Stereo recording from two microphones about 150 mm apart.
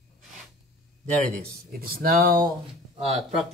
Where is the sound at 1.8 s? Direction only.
75° right (ahead or behind).